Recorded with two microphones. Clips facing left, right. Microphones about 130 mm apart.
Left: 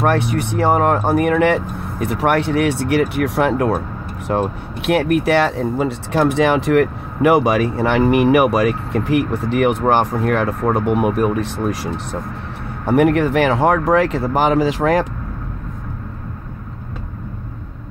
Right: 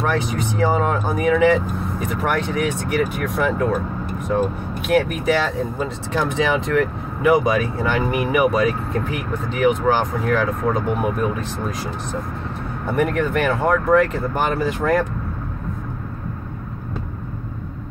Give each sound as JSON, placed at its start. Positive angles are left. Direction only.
{"t": 0.0, "sound": "speech", "side_deg": 65}